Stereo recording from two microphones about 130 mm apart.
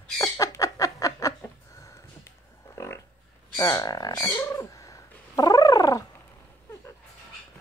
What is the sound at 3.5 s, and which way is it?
Bird, 30° left (ahead or behind).